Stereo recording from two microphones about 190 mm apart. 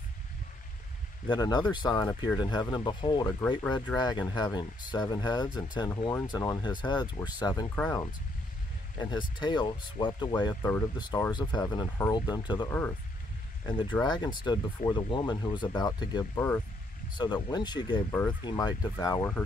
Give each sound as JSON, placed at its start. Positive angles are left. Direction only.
{"t": 1.2, "sound": "speech", "side_deg": 20}
{"t": 7.7, "sound": "speech", "side_deg": 10}
{"t": 8.9, "sound": "speech", "side_deg": 25}